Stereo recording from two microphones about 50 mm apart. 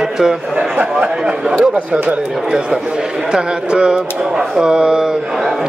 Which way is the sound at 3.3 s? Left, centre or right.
Centre.